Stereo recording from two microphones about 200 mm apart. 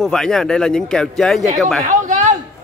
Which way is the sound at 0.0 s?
5° left (ahead or behind).